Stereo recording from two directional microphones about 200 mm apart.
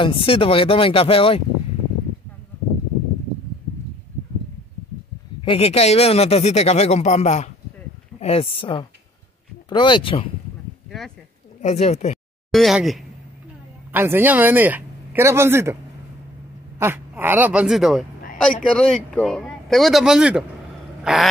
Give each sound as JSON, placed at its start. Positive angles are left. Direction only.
{"t": 0.0, "sound": "speech", "side_deg": 25}
{"t": 5.4, "sound": "speech", "side_deg": 30}
{"t": 11.6, "sound": "speech", "side_deg": 30}
{"t": 12.5, "sound": "speech", "side_deg": 0}
{"t": 21.0, "sound": "a sound", "side_deg": 0}